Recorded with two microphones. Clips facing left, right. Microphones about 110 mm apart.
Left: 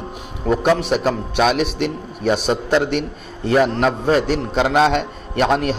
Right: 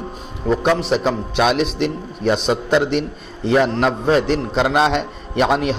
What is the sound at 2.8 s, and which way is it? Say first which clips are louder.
Speech: right 1 dB; 50° left (ahead or behind).